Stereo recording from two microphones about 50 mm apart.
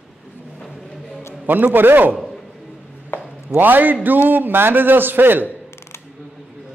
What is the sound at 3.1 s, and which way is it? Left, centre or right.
Chopping, left.